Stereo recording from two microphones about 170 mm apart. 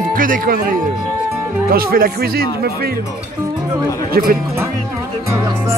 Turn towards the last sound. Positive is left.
turn(degrees=-20)  # may be behind; listen again after turning